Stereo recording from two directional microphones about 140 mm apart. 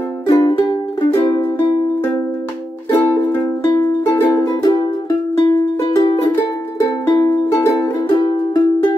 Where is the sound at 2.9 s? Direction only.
20° left (ahead or behind).